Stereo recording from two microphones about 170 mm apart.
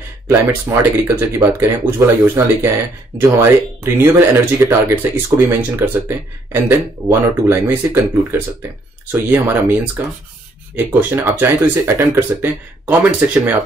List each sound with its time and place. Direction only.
0.5 s speech: 15° right (ahead or behind)